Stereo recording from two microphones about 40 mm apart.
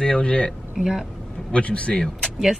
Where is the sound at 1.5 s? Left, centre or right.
Left.